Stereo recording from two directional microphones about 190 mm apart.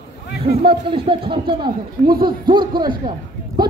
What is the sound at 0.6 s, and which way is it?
Speech, 25° right (ahead or behind).